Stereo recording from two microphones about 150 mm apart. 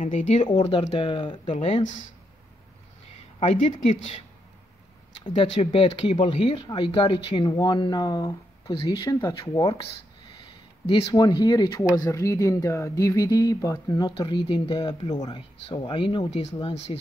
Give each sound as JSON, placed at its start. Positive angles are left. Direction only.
{"t": 0.0, "sound": "speech", "side_deg": 55}
{"t": 0.5, "sound": "speech", "side_deg": 35}
{"t": 3.3, "sound": "speech", "side_deg": 40}
{"t": 5.2, "sound": "speech", "side_deg": 35}
{"t": 10.9, "sound": "speech", "side_deg": 30}